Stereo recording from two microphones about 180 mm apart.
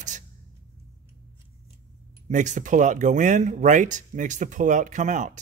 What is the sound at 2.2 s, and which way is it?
Speech, 40° right (ahead or behind).